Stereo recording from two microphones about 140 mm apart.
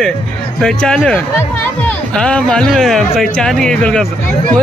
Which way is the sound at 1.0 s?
15° left (ahead or behind).